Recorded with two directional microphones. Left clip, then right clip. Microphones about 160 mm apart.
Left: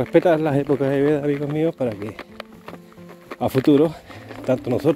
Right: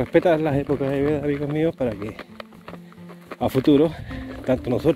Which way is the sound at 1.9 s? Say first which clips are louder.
Left 1 dB; 30° left (ahead or behind).